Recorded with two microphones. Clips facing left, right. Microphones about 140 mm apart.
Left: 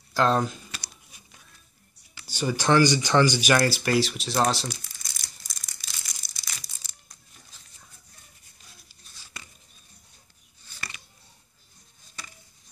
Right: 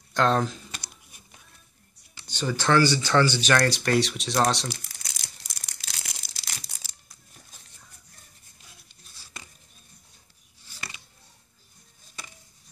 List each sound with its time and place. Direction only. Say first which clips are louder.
0.1 s speech: even; 5° left (ahead or behind)
2.2 s speech: left 1 dB; 10° left (ahead or behind)
4.7 s crumpling: right 1 dB; 75° right (ahead or behind); by 6.9 s 90° right